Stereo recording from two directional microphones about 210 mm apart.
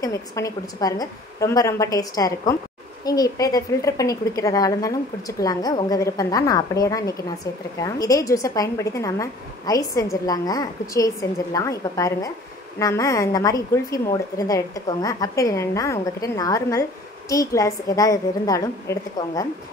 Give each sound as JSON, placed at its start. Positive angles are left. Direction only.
{"t": 0.0, "sound": "a woman's voice", "side_deg": 15}